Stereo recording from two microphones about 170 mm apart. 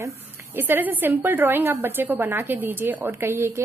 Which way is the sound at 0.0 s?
10° right (ahead or behind).